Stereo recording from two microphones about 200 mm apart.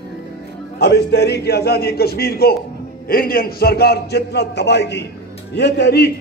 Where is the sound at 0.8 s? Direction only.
55° left (ahead or behind).